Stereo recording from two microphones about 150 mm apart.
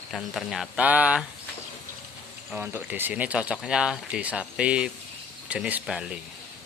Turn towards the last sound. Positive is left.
turn(degrees=-5)  # may be behind; listen again after turning